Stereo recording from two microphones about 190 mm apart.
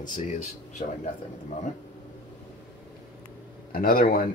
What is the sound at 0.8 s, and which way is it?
Speech, 35° left (ahead or behind).